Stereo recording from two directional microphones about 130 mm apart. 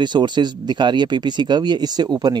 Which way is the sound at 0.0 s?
35° right (ahead or behind).